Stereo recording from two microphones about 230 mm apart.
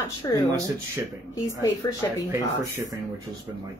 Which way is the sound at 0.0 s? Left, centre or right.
Centre.